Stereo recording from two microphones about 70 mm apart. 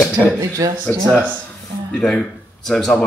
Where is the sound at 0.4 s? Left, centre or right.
Right.